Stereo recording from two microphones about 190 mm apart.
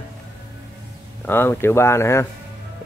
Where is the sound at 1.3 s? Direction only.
10° left (ahead or behind).